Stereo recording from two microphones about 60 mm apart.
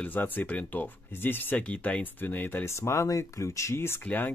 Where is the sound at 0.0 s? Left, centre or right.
Left.